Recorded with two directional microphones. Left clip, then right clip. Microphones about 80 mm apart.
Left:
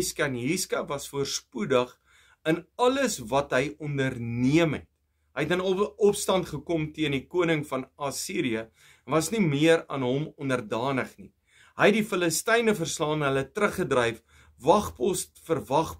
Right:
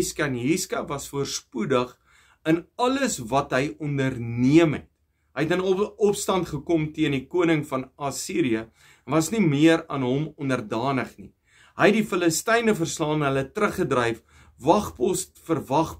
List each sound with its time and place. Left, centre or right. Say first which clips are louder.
0.0 s speech: right 2 dB; left